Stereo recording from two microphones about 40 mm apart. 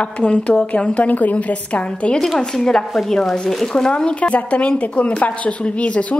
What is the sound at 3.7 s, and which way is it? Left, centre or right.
Speech, left.